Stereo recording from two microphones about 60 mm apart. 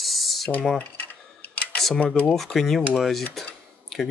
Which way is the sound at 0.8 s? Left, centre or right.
Left.